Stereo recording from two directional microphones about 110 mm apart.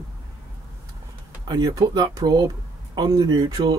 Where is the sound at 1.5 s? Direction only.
35° right (ahead or behind).